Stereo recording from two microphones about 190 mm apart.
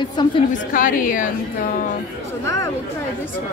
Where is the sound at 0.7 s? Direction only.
45° left (ahead or behind).